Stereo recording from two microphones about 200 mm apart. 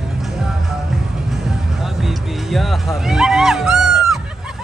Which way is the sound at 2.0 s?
Centre (ahead or behind).